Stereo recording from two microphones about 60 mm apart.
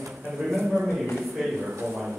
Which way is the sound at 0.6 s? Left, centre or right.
Centre.